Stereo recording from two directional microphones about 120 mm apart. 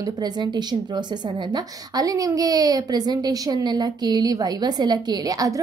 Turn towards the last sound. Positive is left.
turn(degrees=-30)  # may be behind; listen again after turning